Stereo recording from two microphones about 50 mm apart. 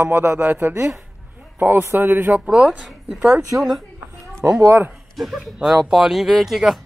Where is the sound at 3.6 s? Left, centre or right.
Centre.